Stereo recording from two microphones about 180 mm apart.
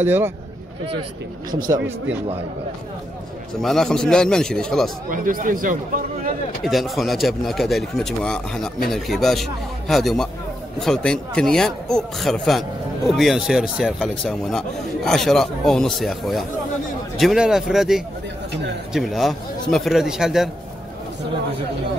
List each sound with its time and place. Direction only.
0.0 s speech: 10° right (ahead or behind)
3.6 s speech: centre (ahead or behind)
5.1 s speech: 45° right (ahead or behind)
6.6 s speech: centre (ahead or behind)